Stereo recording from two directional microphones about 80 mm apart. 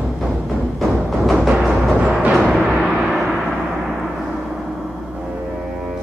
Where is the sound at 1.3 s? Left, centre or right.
Centre.